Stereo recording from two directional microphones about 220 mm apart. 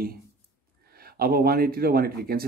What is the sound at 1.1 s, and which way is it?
Speech, 45° right (ahead or behind).